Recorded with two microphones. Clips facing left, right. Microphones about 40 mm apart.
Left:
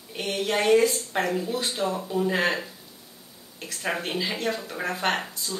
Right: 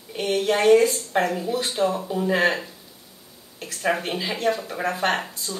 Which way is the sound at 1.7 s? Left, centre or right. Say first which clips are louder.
Right 7 dB; right.